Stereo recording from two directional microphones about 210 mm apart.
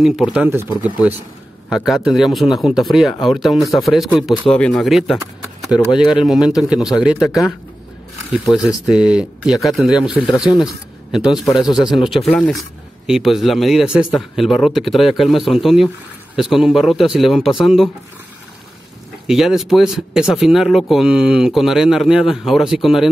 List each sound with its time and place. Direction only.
0.0 s speech: centre (ahead or behind)
1.7 s speech: centre (ahead or behind)
8.3 s speech: 5° right (ahead or behind)
11.4 s speech: 20° left (ahead or behind)
12.0 s speech: centre (ahead or behind)
19.2 s speech: centre (ahead or behind)